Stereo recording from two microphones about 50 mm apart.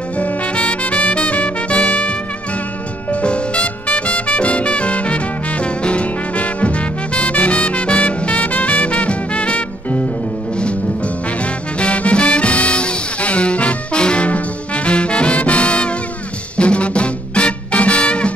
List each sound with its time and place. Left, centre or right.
0.2 s music: left
11.8 s music: left